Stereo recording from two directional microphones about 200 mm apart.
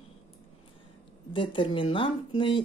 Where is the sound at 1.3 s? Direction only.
25° left (ahead or behind).